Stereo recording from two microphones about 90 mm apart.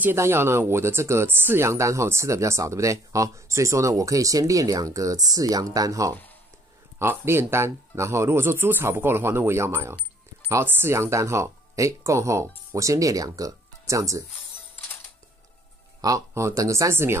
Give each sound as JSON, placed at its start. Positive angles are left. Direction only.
{"t": 0.0, "sound": "speech", "side_deg": -25}
{"t": 7.0, "sound": "speech", "side_deg": -25}
{"t": 16.0, "sound": "speech", "side_deg": -35}